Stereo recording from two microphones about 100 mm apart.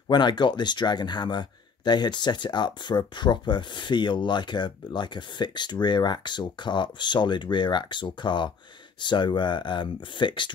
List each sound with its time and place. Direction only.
0.1 s speech: 50° left (ahead or behind)